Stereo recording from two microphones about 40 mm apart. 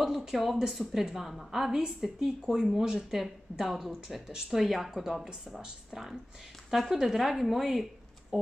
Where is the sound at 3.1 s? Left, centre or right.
Centre.